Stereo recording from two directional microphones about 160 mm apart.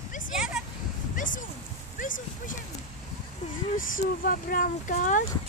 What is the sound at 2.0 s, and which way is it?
Speech, 55° left (ahead or behind).